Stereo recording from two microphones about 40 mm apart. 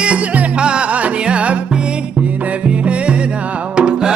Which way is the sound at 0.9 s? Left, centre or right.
Right.